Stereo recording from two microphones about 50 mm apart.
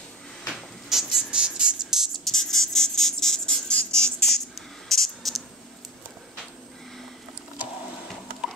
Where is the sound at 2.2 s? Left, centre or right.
Centre.